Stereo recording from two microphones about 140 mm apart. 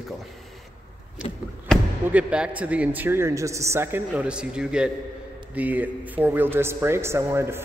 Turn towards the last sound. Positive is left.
turn(degrees=-20)  # may be behind; listen again after turning